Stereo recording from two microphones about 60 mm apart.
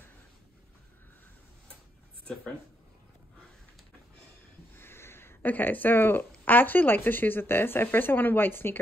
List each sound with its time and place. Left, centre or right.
4.7 s speech: left